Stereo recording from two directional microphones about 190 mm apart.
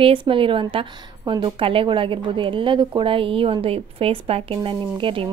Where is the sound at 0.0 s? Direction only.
25° right (ahead or behind).